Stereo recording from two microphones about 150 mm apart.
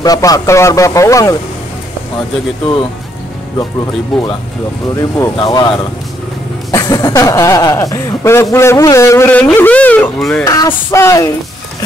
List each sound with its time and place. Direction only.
0.0 s speech: 25° left (ahead or behind)
4.1 s speech: centre (ahead or behind)
4.8 s speech: 20° left (ahead or behind)
5.4 s speech: 30° left (ahead or behind); by 10.4 s centre (ahead or behind)
10.4 s speech: 25° left (ahead or behind)